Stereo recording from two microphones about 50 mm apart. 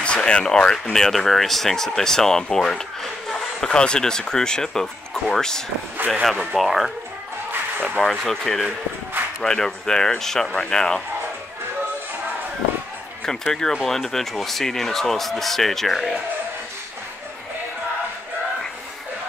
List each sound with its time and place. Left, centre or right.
0.0 s speech: centre
5.9 s speech: right
6.5 s speech: centre
8.3 s speech: centre
13.2 s speech: centre